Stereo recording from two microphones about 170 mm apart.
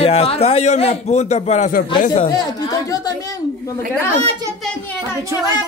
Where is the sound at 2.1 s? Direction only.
25° left (ahead or behind).